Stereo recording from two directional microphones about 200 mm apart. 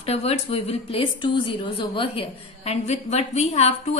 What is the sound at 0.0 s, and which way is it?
A woman's voice, 30° left (ahead or behind).